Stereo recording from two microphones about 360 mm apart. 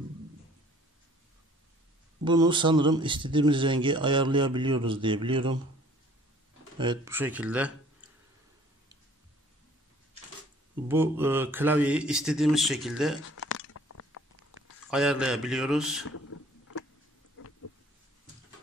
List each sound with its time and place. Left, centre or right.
2.2 s speech: centre
6.8 s speech: centre
10.9 s speech: centre
13.4 s a sound: left
14.9 s speech: centre
16.1 s a sound: left